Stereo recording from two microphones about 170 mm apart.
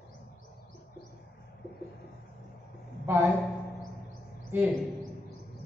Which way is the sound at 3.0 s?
15° right (ahead or behind).